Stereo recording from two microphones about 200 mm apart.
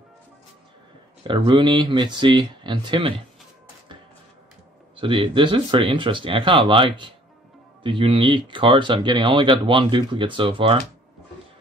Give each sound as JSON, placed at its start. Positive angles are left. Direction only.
{"t": 1.2, "sound": "speech", "side_deg": -25}
{"t": 4.9, "sound": "speech", "side_deg": -25}